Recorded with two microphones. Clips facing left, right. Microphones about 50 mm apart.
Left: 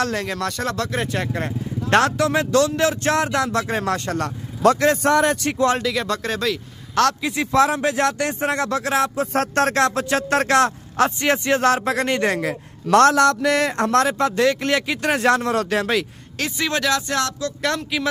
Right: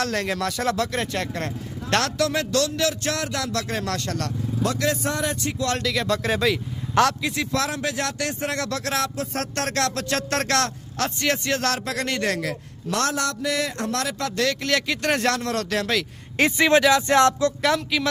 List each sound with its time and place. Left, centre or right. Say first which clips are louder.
0.0 s speech: left 2 dB; centre; by 4.3 s left
4.6 s speech: left 9 dB; left
5.0 s speech: left 8 dB; left
5.8 s speech: left 1 dB; centre
7.2 s speech: left 7 dB; centre
9.3 s speech: left 7 dB; left
13.2 s speech: left 8 dB; left; by 16.1 s centre
16.3 s speech: right 6 dB; right
17.6 s speech: right 1 dB; centre